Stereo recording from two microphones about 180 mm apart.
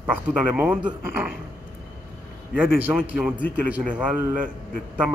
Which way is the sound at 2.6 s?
10° right (ahead or behind).